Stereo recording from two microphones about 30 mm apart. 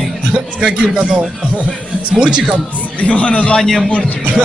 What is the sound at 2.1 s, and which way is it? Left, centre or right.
Speech, right.